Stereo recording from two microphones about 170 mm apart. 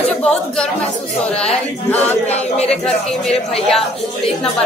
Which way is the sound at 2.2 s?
40° left (ahead or behind).